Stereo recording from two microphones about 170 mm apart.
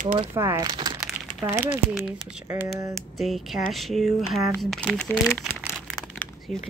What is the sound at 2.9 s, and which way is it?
Speech, centre (ahead or behind).